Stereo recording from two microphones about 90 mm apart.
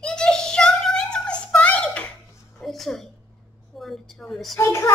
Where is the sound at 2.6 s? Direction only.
5° left (ahead or behind).